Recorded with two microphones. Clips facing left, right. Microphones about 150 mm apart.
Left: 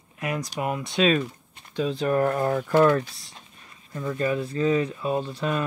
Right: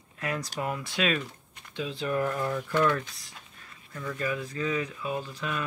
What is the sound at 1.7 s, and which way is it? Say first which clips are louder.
Speech: left 6 dB; 40° left (ahead or behind).